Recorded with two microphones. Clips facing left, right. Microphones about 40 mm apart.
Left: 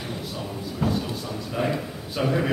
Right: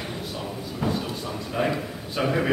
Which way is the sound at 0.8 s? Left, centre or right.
Centre.